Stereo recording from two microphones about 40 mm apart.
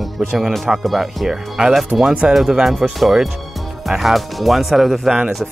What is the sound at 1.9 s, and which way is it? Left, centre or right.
Speech, right.